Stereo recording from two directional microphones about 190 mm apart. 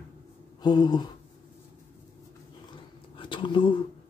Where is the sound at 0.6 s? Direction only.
20° left (ahead or behind).